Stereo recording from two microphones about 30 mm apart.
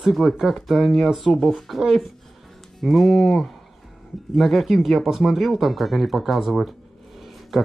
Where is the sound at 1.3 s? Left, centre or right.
Centre.